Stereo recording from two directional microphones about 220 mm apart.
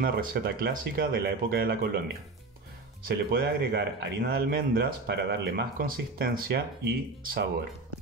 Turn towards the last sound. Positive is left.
turn(degrees=-45)  # may be behind; listen again after turning